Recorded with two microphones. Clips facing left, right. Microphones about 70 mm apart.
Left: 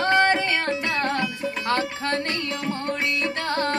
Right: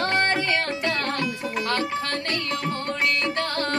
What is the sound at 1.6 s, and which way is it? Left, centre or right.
Music, centre.